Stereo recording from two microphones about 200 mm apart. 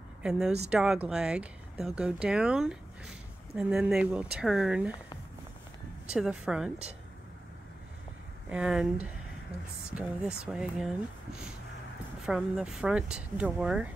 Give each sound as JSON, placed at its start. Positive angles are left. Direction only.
{"t": 0.2, "sound": "speech", "side_deg": -5}
{"t": 6.0, "sound": "speech", "side_deg": -5}
{"t": 8.5, "sound": "speech", "side_deg": -5}